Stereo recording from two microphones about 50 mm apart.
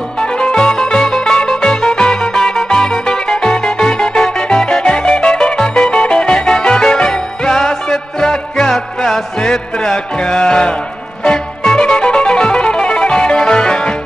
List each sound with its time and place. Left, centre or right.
0.2 s music: centre